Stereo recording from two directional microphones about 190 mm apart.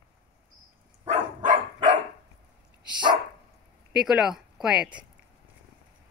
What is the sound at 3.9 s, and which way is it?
Speech, 5° right (ahead or behind).